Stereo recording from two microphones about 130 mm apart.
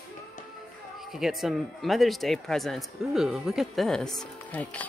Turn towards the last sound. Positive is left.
turn(degrees=10)  # may be behind; listen again after turning